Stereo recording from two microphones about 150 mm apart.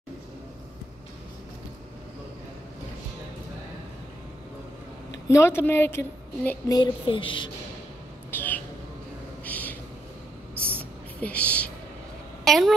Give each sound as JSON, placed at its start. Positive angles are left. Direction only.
{"t": 5.3, "sound": "a woman's voice", "side_deg": 15}
{"t": 6.7, "sound": "speech", "side_deg": 30}
{"t": 8.3, "sound": "a sound", "side_deg": 10}
{"t": 11.1, "sound": "speech", "side_deg": 10}